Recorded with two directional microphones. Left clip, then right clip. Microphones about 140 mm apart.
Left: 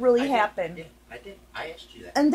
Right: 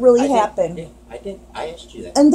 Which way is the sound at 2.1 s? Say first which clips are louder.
Right 9 dB; 35° left (ahead or behind).